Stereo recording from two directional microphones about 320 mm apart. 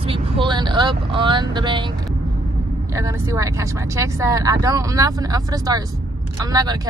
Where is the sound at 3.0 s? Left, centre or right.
Centre.